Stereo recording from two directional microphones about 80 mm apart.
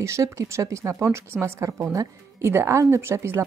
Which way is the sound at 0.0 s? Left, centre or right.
Right.